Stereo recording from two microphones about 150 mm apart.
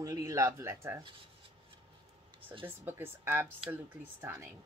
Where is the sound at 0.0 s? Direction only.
20° right (ahead or behind).